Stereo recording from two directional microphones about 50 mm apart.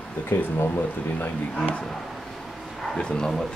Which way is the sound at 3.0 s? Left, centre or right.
Centre.